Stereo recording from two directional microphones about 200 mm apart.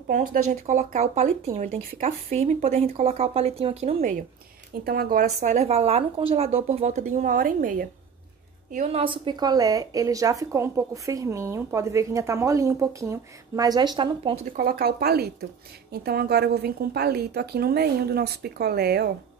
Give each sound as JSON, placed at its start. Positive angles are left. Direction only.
{"t": 0.1, "sound": "speech", "side_deg": -40}
{"t": 4.8, "sound": "speech", "side_deg": -50}
{"t": 8.7, "sound": "a woman's voice", "side_deg": -30}
{"t": 14.5, "sound": "a woman's voice", "side_deg": -50}